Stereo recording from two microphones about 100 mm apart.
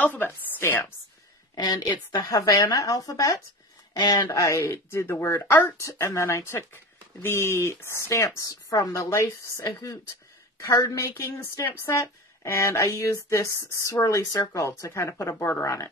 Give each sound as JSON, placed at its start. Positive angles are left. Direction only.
{"t": 0.0, "sound": "a woman's voice", "side_deg": 20}
{"t": 1.5, "sound": "a woman's voice", "side_deg": 40}
{"t": 15.3, "sound": "speech", "side_deg": 20}
{"t": 15.6, "sound": "a woman's voice", "side_deg": 35}